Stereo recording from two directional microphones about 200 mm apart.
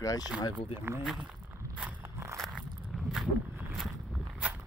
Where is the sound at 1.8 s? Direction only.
10° right (ahead or behind).